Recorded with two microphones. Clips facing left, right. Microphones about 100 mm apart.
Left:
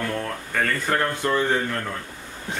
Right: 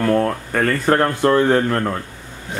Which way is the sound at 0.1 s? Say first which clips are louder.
Right 10 dB; 45° right (ahead or behind).